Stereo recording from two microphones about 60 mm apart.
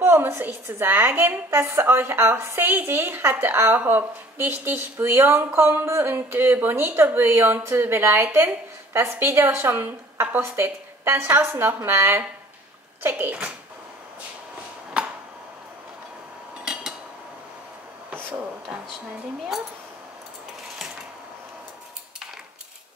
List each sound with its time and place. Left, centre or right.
0.0 s a woman's voice: right
1.5 s a woman's voice: right
1.8 s a woman's voice: right
13.3 s a child's voice: right
16.5 s cutlery: centre